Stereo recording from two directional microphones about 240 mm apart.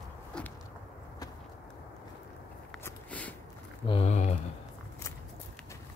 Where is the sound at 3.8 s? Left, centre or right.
Left.